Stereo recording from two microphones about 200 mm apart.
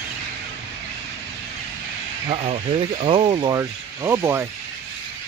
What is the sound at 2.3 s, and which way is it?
Speech, 30° right (ahead or behind).